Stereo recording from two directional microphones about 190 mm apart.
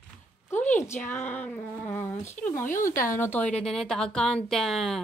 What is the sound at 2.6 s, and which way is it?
Speech, 45° left (ahead or behind).